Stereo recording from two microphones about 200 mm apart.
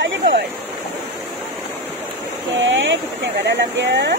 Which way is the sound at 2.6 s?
70° right (ahead or behind).